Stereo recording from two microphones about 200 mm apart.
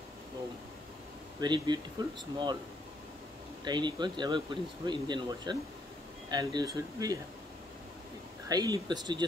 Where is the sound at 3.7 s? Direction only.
20° right (ahead or behind).